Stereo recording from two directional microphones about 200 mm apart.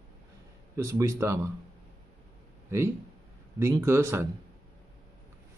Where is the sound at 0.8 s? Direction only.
15° right (ahead or behind).